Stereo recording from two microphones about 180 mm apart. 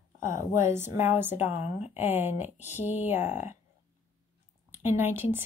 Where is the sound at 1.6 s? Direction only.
35° left (ahead or behind).